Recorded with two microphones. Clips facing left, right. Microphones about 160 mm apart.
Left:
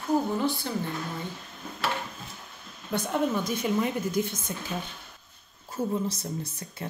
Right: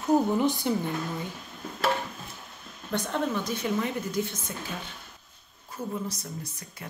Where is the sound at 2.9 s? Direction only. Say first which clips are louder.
Left 2 dB; 10° left (ahead or behind).